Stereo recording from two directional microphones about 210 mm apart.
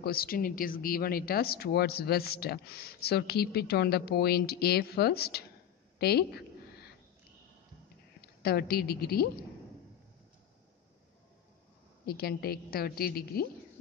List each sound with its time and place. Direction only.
0.0 s speech: 45° left (ahead or behind)
5.9 s a sound: 50° left (ahead or behind)
8.2 s a woman's voice: 50° left (ahead or behind)
12.1 s speech: 45° left (ahead or behind)